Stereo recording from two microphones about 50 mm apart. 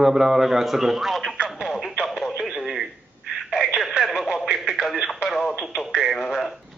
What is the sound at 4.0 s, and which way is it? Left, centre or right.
Radio, centre.